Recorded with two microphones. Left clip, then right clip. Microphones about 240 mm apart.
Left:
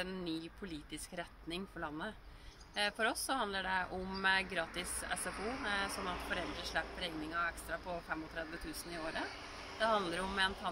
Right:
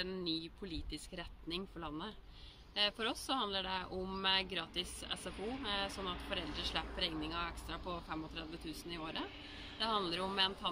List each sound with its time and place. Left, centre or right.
0.0 s speech: centre
9.8 s speech: centre